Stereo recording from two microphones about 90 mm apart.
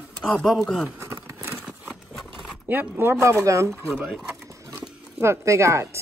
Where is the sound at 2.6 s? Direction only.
25° right (ahead or behind).